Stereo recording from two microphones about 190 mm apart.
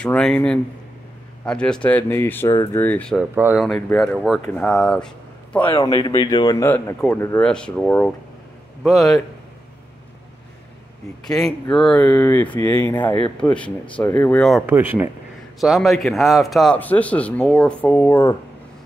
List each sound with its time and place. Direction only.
0.0 s a man's voice: 5° left (ahead or behind)
3.2 s a man's voice: 5° right (ahead or behind)
5.7 s a man's voice: 25° left (ahead or behind); by 9.2 s centre (ahead or behind)
11.7 s speech: 5° left (ahead or behind)
14.7 s a man's voice: 10° right (ahead or behind); by 18.3 s 15° left (ahead or behind)